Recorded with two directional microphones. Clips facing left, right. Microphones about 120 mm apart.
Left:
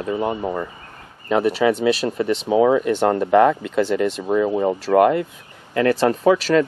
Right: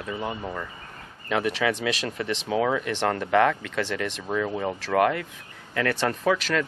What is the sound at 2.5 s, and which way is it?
Speech, 15° left (ahead or behind).